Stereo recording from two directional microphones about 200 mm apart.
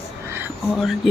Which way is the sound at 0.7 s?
Centre (ahead or behind).